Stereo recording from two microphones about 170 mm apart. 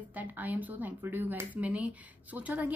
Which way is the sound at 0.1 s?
10° right (ahead or behind).